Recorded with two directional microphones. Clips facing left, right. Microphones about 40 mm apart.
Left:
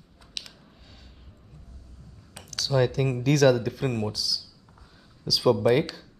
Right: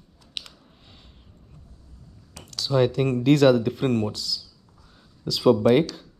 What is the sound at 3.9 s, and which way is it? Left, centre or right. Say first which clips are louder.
Speech: right 5 dB; centre.